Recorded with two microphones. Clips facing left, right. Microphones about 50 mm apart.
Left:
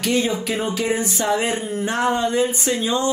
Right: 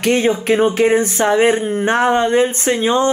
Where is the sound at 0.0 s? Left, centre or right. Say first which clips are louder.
Right 6 dB; right.